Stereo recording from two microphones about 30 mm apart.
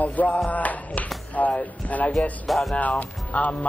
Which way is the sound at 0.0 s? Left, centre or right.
Left.